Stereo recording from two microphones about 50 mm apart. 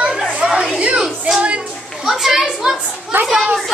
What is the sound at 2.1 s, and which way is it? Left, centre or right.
Speech, centre.